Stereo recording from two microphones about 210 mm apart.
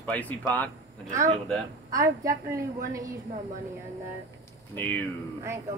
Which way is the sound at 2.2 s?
15° right (ahead or behind).